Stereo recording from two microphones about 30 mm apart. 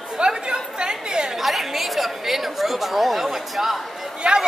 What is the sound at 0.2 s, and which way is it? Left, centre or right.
Chatter, right.